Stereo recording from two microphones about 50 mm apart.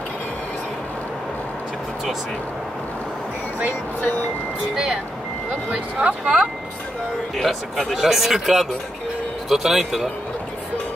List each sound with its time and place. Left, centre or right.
5.7 s speech: centre
7.3 s speech: centre